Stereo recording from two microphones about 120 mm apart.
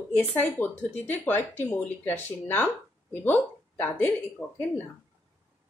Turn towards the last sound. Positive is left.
turn(degrees=15)  # may be behind; listen again after turning